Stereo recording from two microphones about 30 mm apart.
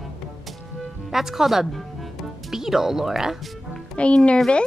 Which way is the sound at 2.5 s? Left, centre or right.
Centre.